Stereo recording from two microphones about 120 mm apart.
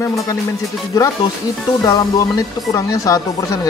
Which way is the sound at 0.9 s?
30° left (ahead or behind).